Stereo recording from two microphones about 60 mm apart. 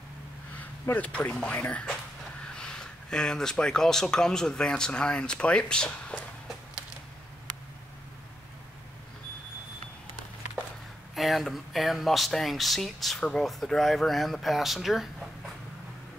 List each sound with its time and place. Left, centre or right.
0.9 s speech: left
2.4 s speech: centre
11.1 s speech: centre